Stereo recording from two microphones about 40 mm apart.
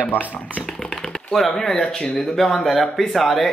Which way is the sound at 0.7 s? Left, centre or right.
Centre.